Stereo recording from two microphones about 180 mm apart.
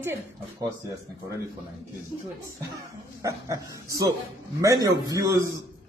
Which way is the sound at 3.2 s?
20° right (ahead or behind).